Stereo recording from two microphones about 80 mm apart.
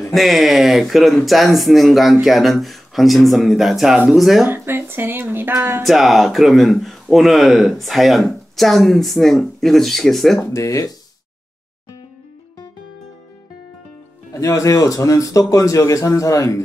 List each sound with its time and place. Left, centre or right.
0.1 s speech: centre
4.5 s speech: right
5.6 s a sound: right
5.9 s speech: centre
10.4 s speech: left
14.3 s speech: left